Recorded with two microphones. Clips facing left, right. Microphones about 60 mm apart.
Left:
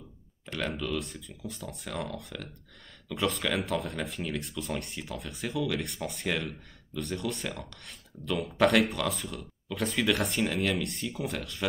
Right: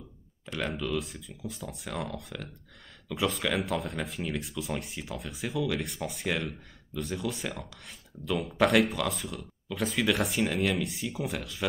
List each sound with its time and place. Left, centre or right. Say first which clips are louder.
0.5 s speech: right 1 dB; centre